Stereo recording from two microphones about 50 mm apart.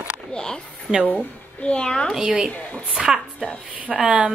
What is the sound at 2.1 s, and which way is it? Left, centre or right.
Speech, centre.